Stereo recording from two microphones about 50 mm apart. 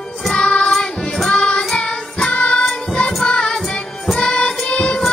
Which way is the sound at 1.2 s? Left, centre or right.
Centre.